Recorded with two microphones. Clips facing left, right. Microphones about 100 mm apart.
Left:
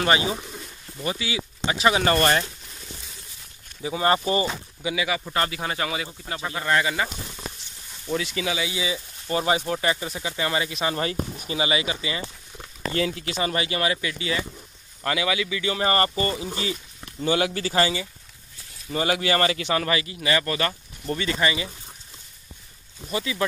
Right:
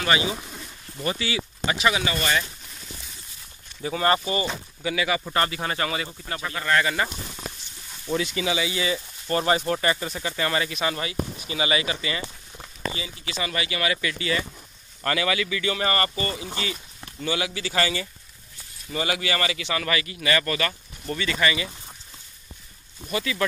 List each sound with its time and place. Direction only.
0.0 s speech: 35° left (ahead or behind)
1.0 s speech: 10° left (ahead or behind)
1.6 s speech: 25° left (ahead or behind)
2.0 s speech: 50° left (ahead or behind)
3.8 s speech: 15° left (ahead or behind)
4.2 s speech: 30° left (ahead or behind)
4.8 s speech: 5° left (ahead or behind)
8.1 s speech: centre (ahead or behind); by 12.3 s 20° left (ahead or behind)
12.9 s speech: 75° left (ahead or behind)
13.3 s speech: 35° left (ahead or behind)
14.0 s speech: 15° left (ahead or behind); by 16.4 s 30° left (ahead or behind)
17.2 s speech: 40° left (ahead or behind)
18.9 s speech: 35° left (ahead or behind)
23.1 s speech: 20° left (ahead or behind)